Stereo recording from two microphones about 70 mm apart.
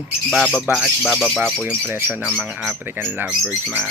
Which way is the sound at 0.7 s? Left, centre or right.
Centre.